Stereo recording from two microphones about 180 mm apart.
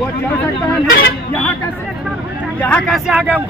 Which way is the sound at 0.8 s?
55° left (ahead or behind).